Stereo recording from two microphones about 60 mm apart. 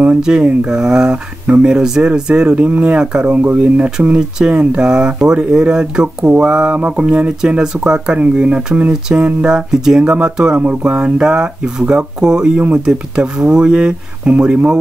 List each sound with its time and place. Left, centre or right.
0.2 s speech: centre
3.3 s speech: right